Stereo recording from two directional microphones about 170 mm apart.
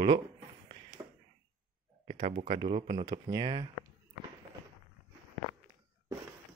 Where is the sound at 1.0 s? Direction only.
25° right (ahead or behind).